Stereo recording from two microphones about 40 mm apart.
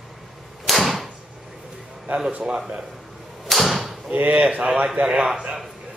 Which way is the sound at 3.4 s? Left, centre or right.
Centre.